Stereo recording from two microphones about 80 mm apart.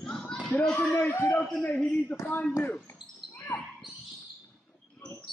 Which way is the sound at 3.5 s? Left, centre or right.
Left.